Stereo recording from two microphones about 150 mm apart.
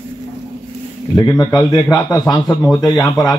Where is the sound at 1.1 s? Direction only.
25° left (ahead or behind).